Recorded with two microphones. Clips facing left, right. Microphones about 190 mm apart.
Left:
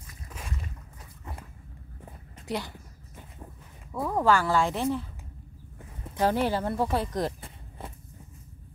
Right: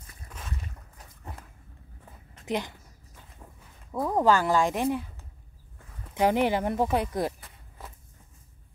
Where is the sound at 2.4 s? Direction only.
20° right (ahead or behind).